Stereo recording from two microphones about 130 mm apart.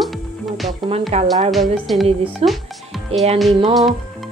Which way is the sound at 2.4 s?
50° right (ahead or behind).